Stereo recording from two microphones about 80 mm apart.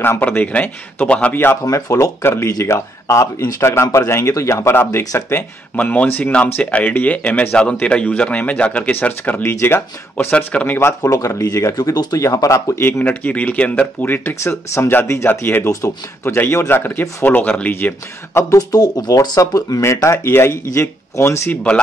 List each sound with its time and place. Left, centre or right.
0.0 s speech: left
1.6 s speech: left
10.3 s speech: centre
11.0 s speech: left
11.7 s speech: left
13.0 s speech: centre
15.6 s speech: left
16.3 s speech: left
18.5 s speech: left